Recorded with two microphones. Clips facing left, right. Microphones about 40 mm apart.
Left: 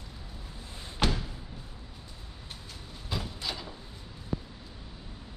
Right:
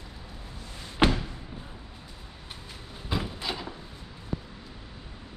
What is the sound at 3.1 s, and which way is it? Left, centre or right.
Sliding door, right.